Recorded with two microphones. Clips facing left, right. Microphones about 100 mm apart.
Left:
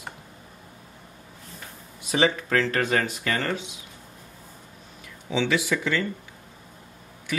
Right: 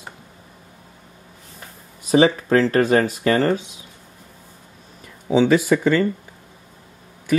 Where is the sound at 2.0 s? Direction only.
40° right (ahead or behind).